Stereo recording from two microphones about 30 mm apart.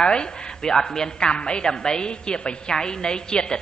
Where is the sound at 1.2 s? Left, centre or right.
Left.